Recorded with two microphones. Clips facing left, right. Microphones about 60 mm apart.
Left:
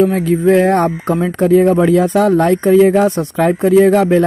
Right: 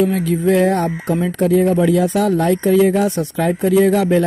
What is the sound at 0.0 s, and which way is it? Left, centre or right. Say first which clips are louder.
Speech: left 4 dB; left.